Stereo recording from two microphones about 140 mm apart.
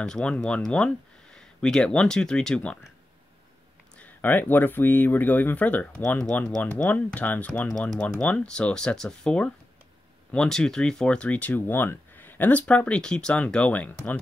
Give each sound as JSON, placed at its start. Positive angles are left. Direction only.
{"t": 0.0, "sound": "speech", "side_deg": 5}
{"t": 4.0, "sound": "speech", "side_deg": 15}